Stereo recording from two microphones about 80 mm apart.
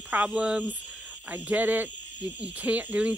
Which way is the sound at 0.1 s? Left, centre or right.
Centre.